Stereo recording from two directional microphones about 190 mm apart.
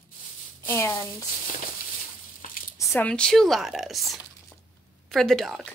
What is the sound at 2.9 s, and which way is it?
A woman's voice, 5° left (ahead or behind).